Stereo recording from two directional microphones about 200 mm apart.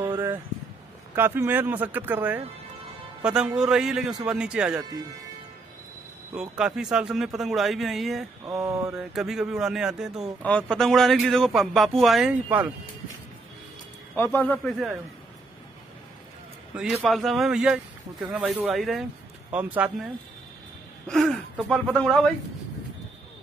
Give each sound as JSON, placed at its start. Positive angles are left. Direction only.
{"t": 1.1, "sound": "a man's voice", "side_deg": -10}
{"t": 6.3, "sound": "a man's voice", "side_deg": -5}
{"t": 8.5, "sound": "speech", "side_deg": -15}
{"t": 8.9, "sound": "a man's voice", "side_deg": 0}
{"t": 14.1, "sound": "a man's voice", "side_deg": 10}
{"t": 16.7, "sound": "a man's voice", "side_deg": -5}
{"t": 21.1, "sound": "a man's voice", "side_deg": 0}